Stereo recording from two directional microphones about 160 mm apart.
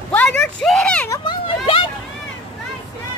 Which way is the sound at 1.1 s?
30° left (ahead or behind).